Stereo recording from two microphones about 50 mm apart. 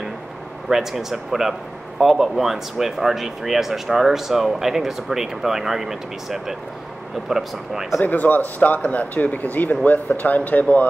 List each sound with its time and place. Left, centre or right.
0.7 s speech: centre
8.0 s speech: left